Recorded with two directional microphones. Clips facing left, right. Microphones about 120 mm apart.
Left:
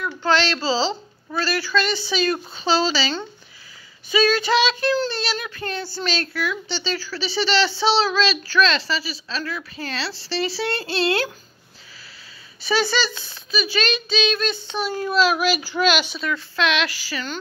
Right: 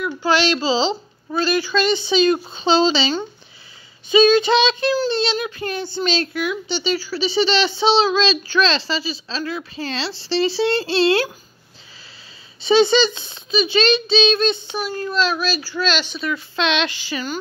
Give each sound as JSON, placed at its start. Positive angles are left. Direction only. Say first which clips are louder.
{"t": 0.0, "sound": "speech", "louder": "right 2 dB", "side_deg": -10}
{"t": 12.6, "sound": "speech", "louder": "right 7 dB", "side_deg": -20}
{"t": 14.7, "sound": "a child's voice", "louder": "left 1 dB", "side_deg": 0}
{"t": 16.2, "sound": "speech", "louder": "right 2 dB", "side_deg": -5}
{"t": 16.5, "sound": "speech", "louder": "right 1 dB", "side_deg": -25}